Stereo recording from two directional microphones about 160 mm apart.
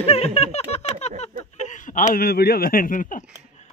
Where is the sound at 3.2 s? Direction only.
5° right (ahead or behind).